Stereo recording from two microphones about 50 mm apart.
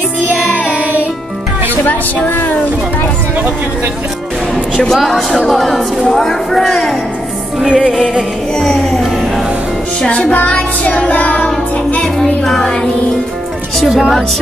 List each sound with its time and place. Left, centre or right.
0.7 s music: right
2.2 s speech: left
4.9 s speech: centre
7.6 s music: centre
8.5 s speech: centre
10.0 s child singing: left
12.2 s speech: centre
13.7 s speech: centre